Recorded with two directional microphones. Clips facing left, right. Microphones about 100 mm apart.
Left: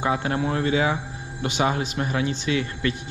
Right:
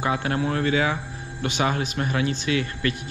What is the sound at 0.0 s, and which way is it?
Speech, 25° left (ahead or behind).